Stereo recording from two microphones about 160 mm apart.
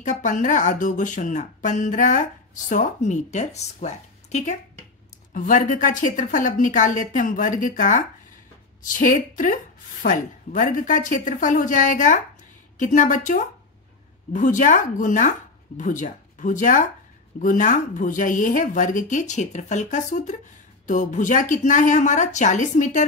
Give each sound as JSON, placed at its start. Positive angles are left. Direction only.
{"t": 0.0, "sound": "speech", "side_deg": 50}
{"t": 5.3, "sound": "speech", "side_deg": 55}